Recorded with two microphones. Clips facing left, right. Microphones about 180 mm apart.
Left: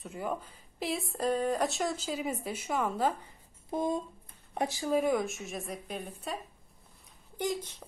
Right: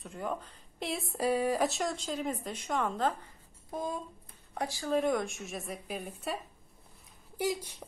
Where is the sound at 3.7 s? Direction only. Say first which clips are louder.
Left 5 dB; 25° left (ahead or behind).